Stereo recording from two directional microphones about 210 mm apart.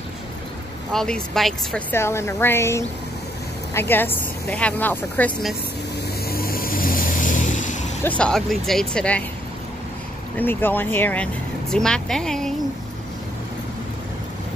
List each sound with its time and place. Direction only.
0.9 s a woman's voice: centre (ahead or behind)
6.2 s vehicle: 45° left (ahead or behind)
8.2 s speech: centre (ahead or behind)
10.3 s a woman's voice: 10° left (ahead or behind)